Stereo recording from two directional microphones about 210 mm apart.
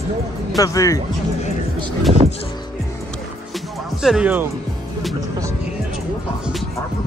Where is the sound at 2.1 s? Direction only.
25° right (ahead or behind).